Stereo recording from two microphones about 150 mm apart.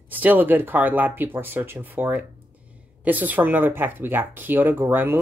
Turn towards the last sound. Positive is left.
turn(degrees=-15)  # may be behind; listen again after turning